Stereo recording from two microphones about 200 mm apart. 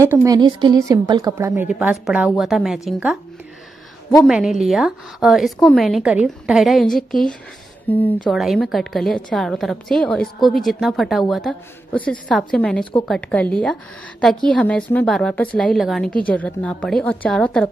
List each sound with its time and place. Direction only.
0.0 s a woman's voice: 15° right (ahead or behind)
1.5 s a woman's voice: 5° right (ahead or behind)
4.2 s a woman's voice: centre (ahead or behind)